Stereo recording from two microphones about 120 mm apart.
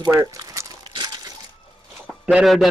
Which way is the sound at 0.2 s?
25° right (ahead or behind).